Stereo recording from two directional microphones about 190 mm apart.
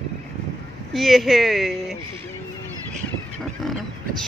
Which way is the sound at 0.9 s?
Centre (ahead or behind).